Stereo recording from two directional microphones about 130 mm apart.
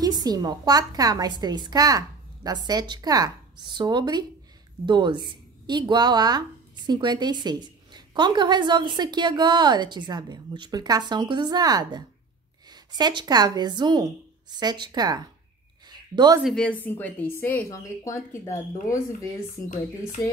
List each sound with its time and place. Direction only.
0.0 s a woman's voice: 30° right (ahead or behind)
15.9 s a sound: 35° right (ahead or behind)
16.4 s a woman's voice: 5° left (ahead or behind); by 18.9 s 25° left (ahead or behind)